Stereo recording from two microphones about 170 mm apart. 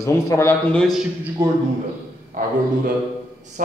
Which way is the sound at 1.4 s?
15° right (ahead or behind).